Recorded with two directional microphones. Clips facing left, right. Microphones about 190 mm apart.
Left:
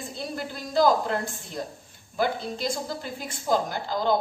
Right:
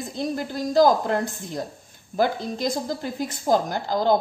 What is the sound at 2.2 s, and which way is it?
A woman's voice, 40° right (ahead or behind).